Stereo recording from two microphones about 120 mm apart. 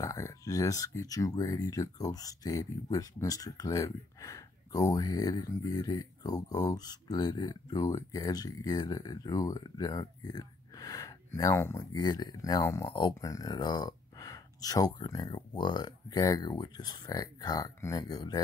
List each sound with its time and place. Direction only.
0.0 s speech: 25° left (ahead or behind)
12.8 s speech: 45° left (ahead or behind)
13.2 s speech: 30° left (ahead or behind)